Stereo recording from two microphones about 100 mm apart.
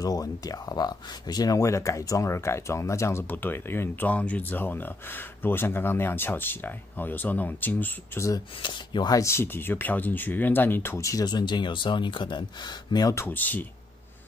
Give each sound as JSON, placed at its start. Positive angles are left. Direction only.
{"t": 0.0, "sound": "speech", "side_deg": 40}
{"t": 8.6, "sound": "speech", "side_deg": 50}
{"t": 9.1, "sound": "speech", "side_deg": 25}
{"t": 11.2, "sound": "speech", "side_deg": 45}
{"t": 13.1, "sound": "speech", "side_deg": 20}